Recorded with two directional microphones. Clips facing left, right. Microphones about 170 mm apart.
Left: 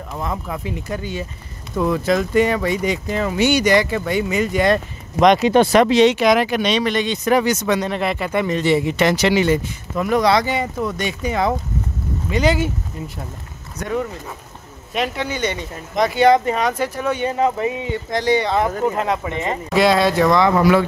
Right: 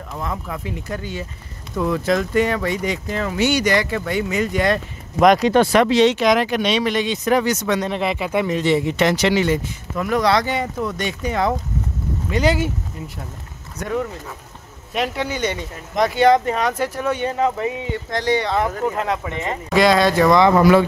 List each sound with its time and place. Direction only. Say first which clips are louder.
0.1 s speech: left 2 dB; 20° left (ahead or behind)
5.2 s speech: even; centre (ahead or behind)
5.5 s speech: left 2 dB; 20° left (ahead or behind); by 7.3 s 5° right (ahead or behind)
7.3 s speech: left 2 dB; 10° left (ahead or behind)
7.8 s speech: even; centre (ahead or behind)
9.9 s speech: left 2 dB; 20° left (ahead or behind)
15.0 s speech: even; 10° right (ahead or behind)
16.2 s speech: left 1 dB; 5° left (ahead or behind)
17.3 s speech: left 2 dB; 15° left (ahead or behind)
19.7 s speech: right 1 dB; centre (ahead or behind)
20.5 s speech: right 2 dB; 45° right (ahead or behind)